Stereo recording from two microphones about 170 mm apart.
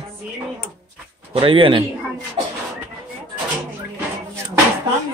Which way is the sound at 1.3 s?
30° right (ahead or behind).